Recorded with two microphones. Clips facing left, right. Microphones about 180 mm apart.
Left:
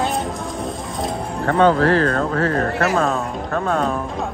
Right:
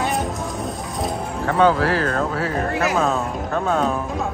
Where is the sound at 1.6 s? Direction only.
5° right (ahead or behind).